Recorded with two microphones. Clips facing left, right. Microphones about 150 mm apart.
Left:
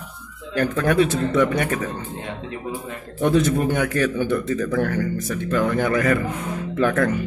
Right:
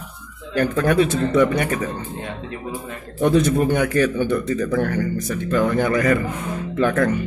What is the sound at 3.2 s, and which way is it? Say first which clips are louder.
Speech: right 2 dB; centre (ahead or behind).